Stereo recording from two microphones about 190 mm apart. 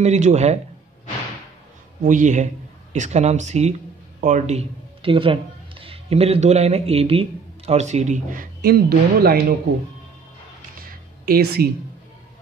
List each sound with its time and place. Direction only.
0.0 s speech: 35° right (ahead or behind)
2.0 s speech: 40° right (ahead or behind)
10.8 s a sound: 50° right (ahead or behind)